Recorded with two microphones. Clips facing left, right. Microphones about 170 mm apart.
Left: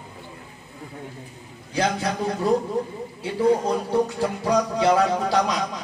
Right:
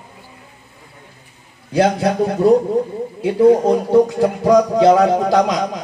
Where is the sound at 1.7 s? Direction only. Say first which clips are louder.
Right 9 dB; 65° right (ahead or behind).